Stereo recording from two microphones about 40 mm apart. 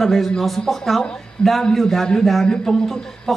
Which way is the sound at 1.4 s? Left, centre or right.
Left.